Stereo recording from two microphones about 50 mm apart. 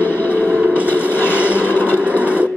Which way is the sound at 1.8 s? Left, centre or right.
Right.